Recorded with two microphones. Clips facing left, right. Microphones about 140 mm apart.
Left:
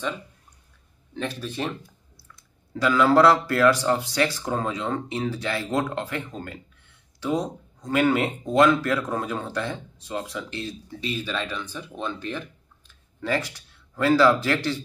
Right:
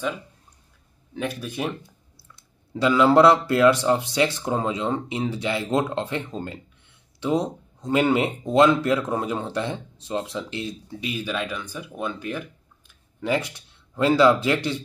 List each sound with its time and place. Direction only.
1.1 s speech: 10° right (ahead or behind)
2.7 s speech: 20° right (ahead or behind)